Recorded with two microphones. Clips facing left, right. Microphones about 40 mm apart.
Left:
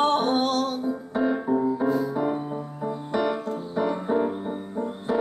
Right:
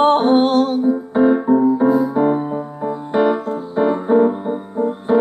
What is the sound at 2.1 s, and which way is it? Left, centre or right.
Keyboard, right.